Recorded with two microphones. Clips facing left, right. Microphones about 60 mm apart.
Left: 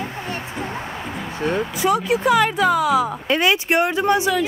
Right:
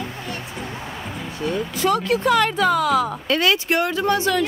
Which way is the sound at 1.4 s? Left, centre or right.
Left.